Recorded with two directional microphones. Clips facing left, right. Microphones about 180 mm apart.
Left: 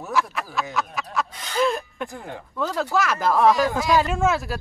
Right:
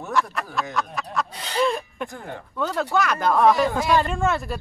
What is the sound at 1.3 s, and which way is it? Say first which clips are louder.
Gasp: right 1 dB; 30° right (ahead or behind).